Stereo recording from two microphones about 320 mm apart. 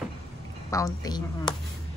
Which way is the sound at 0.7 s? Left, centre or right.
Centre.